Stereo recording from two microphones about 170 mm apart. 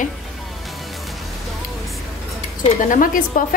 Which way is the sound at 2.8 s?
50° left (ahead or behind).